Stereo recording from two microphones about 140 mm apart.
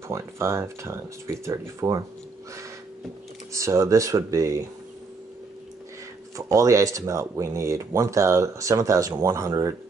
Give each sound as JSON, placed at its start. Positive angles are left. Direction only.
{"t": 0.1, "sound": "speech", "side_deg": -20}
{"t": 3.5, "sound": "speech", "side_deg": -20}
{"t": 6.3, "sound": "speech", "side_deg": -20}